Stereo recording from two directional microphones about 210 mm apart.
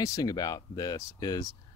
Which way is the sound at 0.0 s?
15° left (ahead or behind).